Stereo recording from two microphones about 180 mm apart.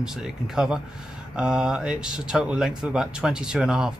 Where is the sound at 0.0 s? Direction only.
5° right (ahead or behind).